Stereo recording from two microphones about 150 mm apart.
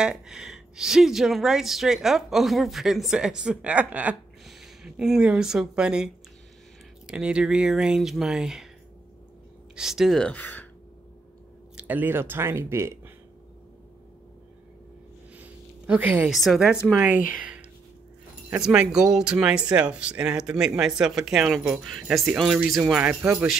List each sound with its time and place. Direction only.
0.0 s speech: 5° right (ahead or behind)
9.8 s speech: centre (ahead or behind)
11.7 s speech: 10° right (ahead or behind)
15.3 s a sound: 10° right (ahead or behind)
16.3 s speech: centre (ahead or behind)